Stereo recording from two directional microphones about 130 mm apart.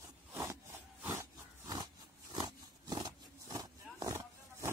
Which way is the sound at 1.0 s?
20° right (ahead or behind).